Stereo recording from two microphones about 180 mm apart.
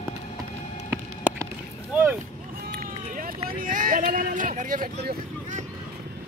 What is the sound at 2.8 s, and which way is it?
Vehicle, 50° right (ahead or behind).